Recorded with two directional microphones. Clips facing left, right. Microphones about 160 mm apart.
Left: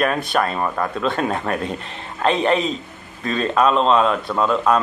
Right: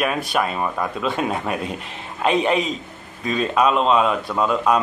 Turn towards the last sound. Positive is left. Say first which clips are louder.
# left 1 dB
turn(degrees=-10)  # may be behind; listen again after turning